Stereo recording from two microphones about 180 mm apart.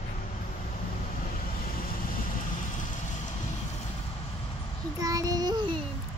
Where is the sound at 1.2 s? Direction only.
50° left (ahead or behind).